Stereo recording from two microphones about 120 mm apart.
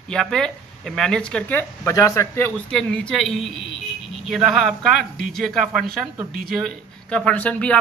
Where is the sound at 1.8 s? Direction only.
25° left (ahead or behind).